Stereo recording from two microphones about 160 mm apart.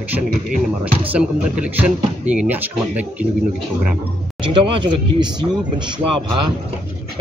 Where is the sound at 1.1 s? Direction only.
10° right (ahead or behind).